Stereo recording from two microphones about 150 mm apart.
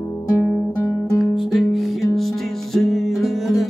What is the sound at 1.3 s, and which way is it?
Music, centre (ahead or behind).